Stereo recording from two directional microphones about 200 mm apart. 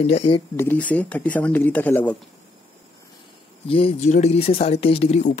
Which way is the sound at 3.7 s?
30° left (ahead or behind).